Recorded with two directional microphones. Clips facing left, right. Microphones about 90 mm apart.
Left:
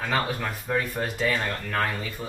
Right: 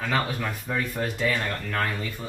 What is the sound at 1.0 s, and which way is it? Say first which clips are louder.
Speech: right 1 dB; 20° left (ahead or behind).